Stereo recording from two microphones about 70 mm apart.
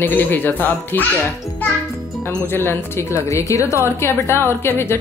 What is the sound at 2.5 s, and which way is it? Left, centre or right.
A woman's voice, left.